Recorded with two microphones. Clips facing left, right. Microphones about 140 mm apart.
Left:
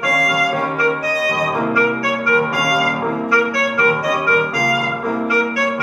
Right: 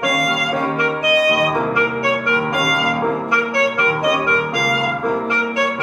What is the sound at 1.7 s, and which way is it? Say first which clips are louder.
Clarinet: left 1 dB; 20° right (ahead or behind).